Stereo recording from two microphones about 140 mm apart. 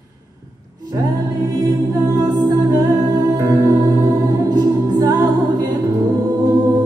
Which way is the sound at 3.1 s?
25° right (ahead or behind).